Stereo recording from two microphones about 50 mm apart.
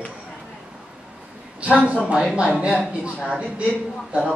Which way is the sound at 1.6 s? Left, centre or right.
Right.